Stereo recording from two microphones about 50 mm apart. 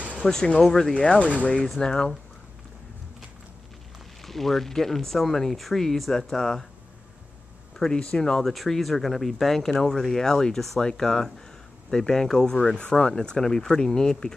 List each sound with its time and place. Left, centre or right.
0.2 s speech: centre
4.2 s speech: centre
7.7 s a sound: centre
8.1 s speech: centre